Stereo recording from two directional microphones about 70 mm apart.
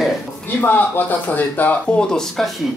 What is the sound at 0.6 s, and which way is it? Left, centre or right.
Speech, left.